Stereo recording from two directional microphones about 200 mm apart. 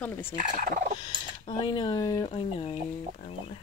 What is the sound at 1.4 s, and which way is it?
Speech, 25° left (ahead or behind).